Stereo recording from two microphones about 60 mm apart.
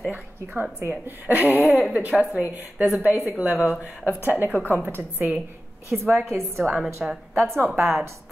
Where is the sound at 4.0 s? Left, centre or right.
Left.